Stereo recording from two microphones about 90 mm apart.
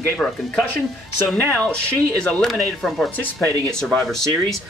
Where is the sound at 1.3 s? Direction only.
5° left (ahead or behind).